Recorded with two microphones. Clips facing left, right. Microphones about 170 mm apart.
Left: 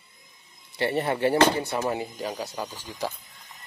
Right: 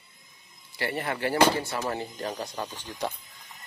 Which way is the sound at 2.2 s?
5° left (ahead or behind).